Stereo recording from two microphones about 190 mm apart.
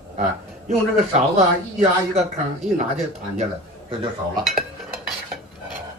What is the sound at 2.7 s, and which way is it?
Speech, 35° right (ahead or behind).